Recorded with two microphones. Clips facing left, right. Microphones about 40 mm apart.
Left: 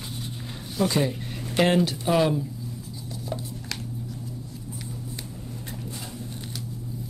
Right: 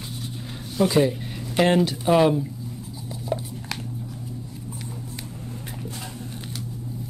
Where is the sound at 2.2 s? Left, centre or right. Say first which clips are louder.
Right 4 dB; centre.